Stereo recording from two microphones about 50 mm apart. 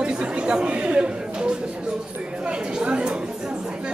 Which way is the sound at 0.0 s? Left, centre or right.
Right.